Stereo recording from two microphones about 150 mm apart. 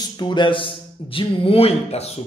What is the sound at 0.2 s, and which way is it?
A man's voice, 30° left (ahead or behind).